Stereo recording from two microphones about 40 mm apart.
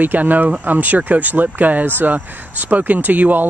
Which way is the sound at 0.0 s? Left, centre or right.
Right.